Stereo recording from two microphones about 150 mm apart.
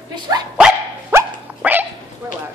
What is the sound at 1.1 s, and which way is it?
Dog, 10° right (ahead or behind).